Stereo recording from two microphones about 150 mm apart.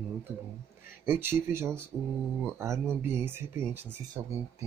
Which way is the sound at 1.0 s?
15° right (ahead or behind).